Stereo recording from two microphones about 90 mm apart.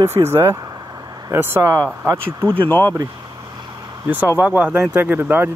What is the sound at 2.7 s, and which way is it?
Speech, 20° left (ahead or behind).